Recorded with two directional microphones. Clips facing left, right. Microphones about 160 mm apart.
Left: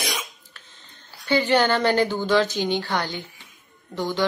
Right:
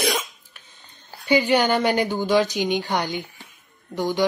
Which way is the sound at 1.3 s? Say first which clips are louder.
Right 1 dB; 10° right (ahead or behind).